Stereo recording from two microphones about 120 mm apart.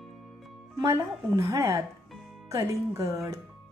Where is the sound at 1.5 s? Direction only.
25° right (ahead or behind).